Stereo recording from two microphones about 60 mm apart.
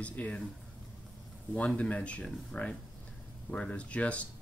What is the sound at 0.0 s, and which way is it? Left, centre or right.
Speech, left.